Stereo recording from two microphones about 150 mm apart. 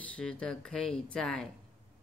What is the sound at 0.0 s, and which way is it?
Speech, 5° left (ahead or behind).